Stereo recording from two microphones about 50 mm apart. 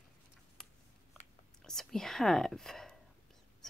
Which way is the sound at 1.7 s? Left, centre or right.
Centre.